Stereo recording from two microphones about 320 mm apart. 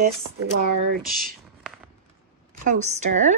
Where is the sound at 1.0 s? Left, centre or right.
Right.